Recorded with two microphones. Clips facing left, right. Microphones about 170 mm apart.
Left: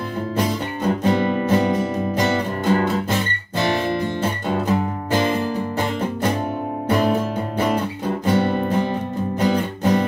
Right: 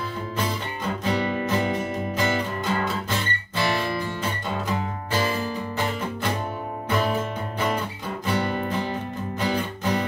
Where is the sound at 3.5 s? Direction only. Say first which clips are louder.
Left 5 dB; 45° left (ahead or behind).